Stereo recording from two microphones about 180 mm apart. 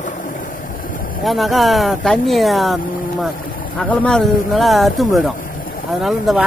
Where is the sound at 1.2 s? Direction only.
Centre (ahead or behind).